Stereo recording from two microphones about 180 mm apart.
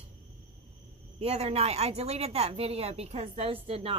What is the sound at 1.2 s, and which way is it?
Speech, 35° right (ahead or behind).